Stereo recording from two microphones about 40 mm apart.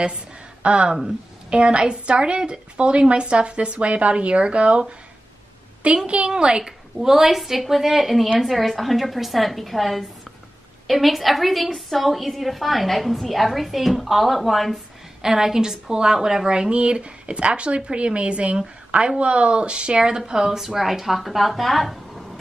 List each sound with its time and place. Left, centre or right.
0.0 s a sound: right
1.0 s a woman's voice: right
6.0 s a woman's voice: right
6.3 s a woman's voice: centre
15.2 s a woman's voice: centre